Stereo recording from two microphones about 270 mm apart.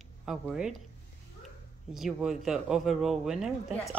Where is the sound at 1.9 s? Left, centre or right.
Centre.